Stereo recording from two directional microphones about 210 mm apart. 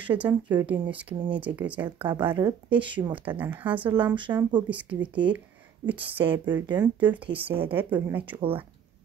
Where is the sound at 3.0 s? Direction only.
10° right (ahead or behind).